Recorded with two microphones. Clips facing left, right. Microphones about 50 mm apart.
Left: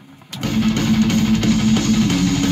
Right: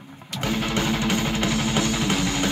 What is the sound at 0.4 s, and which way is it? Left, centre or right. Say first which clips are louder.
Music: left 6 dB; centre.